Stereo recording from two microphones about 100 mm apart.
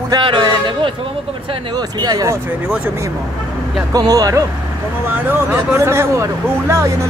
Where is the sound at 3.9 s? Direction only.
40° right (ahead or behind).